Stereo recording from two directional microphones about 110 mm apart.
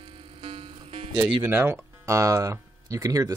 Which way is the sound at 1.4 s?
20° right (ahead or behind).